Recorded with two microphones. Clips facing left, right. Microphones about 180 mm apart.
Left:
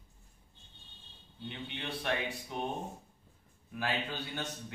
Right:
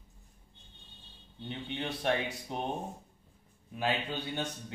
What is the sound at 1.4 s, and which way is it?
A man's voice, 35° right (ahead or behind).